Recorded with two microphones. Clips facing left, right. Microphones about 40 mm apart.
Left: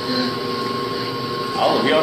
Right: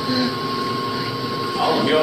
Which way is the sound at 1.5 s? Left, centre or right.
Left.